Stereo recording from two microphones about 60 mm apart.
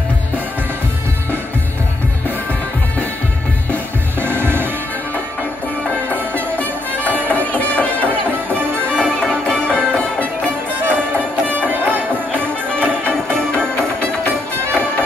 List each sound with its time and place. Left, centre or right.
4.2 s music: right
6.3 s music: left
10.8 s music: right